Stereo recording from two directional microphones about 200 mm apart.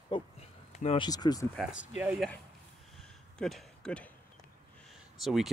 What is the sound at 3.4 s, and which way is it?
Speech, 5° left (ahead or behind).